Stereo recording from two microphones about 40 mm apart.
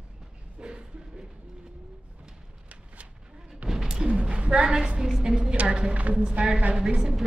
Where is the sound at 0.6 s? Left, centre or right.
Right.